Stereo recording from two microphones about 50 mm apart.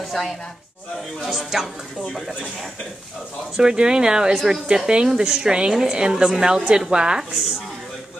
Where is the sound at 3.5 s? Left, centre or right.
Centre.